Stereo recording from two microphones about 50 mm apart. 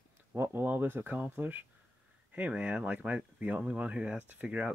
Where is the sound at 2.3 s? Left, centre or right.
Right.